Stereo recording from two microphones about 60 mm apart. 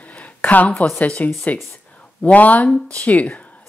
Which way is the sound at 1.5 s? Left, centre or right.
Left.